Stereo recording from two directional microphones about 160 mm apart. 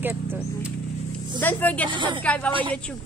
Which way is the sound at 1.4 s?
10° left (ahead or behind).